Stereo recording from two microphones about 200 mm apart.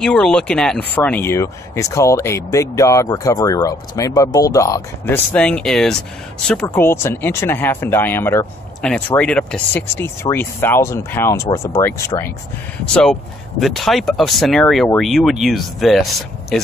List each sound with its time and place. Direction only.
0.0 s speech: 5° left (ahead or behind)
5.3 s speech: 5° left (ahead or behind)